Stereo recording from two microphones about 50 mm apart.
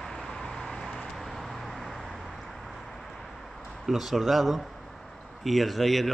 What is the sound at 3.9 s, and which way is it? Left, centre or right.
Speech, centre.